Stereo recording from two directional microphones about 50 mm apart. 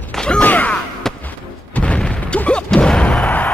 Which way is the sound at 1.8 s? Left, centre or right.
Left.